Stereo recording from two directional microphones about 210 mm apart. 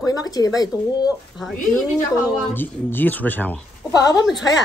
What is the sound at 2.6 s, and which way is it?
Speech, 10° left (ahead or behind).